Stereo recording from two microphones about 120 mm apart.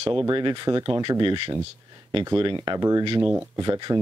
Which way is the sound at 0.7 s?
30° right (ahead or behind).